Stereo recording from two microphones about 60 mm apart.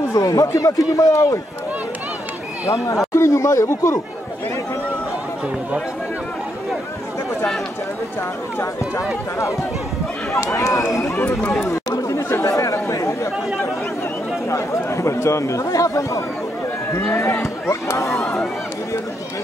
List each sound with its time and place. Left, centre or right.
0.1 s speech: left
3.1 s speech: left
10.3 s speech: left
11.7 s chatter: left
12.2 s chatter: left
12.5 s chatter: left
14.9 s speech: left